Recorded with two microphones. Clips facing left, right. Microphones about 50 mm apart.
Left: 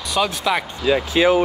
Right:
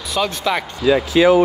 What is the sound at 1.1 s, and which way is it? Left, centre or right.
Speech, left.